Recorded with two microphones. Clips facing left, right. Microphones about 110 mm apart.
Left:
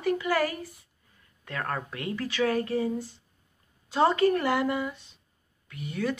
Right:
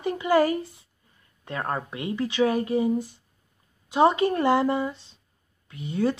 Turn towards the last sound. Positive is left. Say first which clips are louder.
# right 5 dB
turn(degrees=-25)  # may be behind; listen again after turning